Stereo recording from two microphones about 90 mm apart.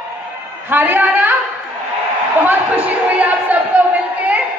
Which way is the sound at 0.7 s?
20° right (ahead or behind).